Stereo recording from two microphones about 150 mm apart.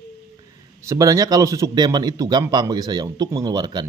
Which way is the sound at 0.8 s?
20° right (ahead or behind).